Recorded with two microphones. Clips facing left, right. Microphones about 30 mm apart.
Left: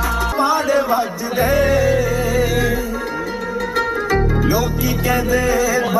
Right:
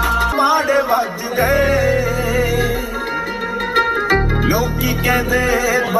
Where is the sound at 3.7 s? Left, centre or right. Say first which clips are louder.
Right 4 dB; right.